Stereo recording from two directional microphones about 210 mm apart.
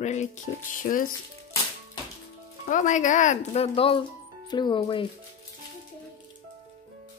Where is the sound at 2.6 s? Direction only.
35° left (ahead or behind).